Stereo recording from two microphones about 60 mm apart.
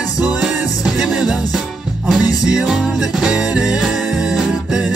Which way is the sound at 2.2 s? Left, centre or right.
Left.